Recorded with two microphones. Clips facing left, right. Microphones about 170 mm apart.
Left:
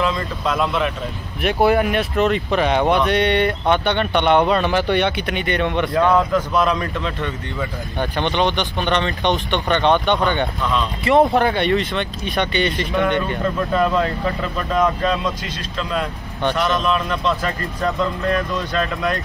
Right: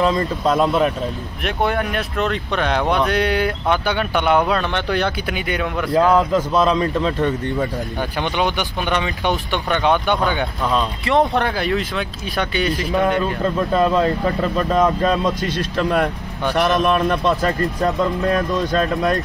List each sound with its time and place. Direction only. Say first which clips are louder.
0.0 s speech: right 4 dB; 40° right (ahead or behind)
1.4 s speech: left 5 dB; 5° left (ahead or behind)
6.3 s speech: right 2 dB; 30° right (ahead or behind)
8.0 s speech: left 2 dB; 10° right (ahead or behind)
13.7 s speech: right 3 dB; 30° right (ahead or behind)
15.5 s a man's voice: right 6 dB; 55° right (ahead or behind); by 19.1 s 40° right (ahead or behind)